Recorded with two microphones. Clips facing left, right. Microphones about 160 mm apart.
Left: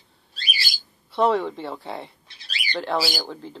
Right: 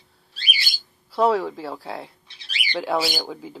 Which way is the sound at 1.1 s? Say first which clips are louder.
Right 1 dB; 5° right (ahead or behind).